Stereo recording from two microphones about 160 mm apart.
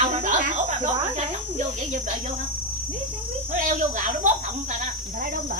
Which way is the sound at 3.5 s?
50° right (ahead or behind).